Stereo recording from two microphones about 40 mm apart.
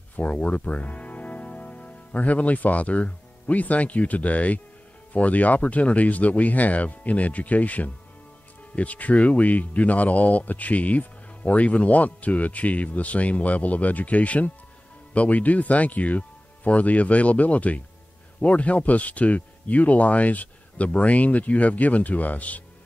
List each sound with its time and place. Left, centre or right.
0.1 s speech: left